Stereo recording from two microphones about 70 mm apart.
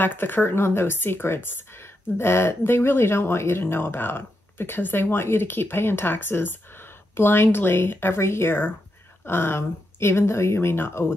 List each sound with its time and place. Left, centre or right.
0.0 s speech: left